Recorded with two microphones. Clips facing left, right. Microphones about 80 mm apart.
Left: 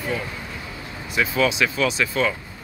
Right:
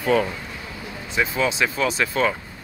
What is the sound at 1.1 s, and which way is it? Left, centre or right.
Speech, right.